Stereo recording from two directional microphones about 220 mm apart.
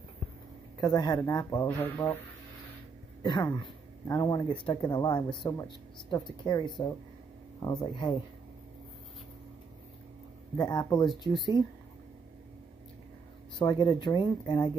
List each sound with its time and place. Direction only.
0.7 s speech: 15° left (ahead or behind)
3.2 s speech: 20° left (ahead or behind)
7.6 s speech: 20° left (ahead or behind)
10.6 s speech: 15° left (ahead or behind)
13.6 s speech: 20° left (ahead or behind)